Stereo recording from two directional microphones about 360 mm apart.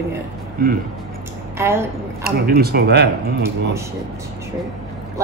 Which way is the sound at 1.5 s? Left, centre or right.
Centre.